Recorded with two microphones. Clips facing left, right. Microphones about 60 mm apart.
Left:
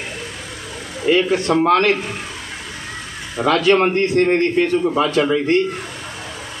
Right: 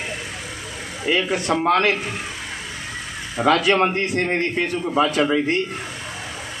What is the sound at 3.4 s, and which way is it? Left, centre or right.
A man's voice, right.